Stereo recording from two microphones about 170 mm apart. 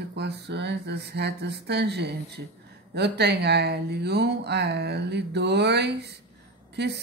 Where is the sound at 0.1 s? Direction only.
80° right.